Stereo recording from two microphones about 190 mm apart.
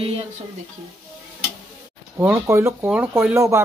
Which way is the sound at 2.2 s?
15° right (ahead or behind).